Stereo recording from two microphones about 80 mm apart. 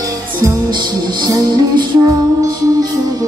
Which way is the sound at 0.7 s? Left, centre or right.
Right.